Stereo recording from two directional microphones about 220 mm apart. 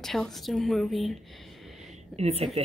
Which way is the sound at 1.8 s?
30° right (ahead or behind).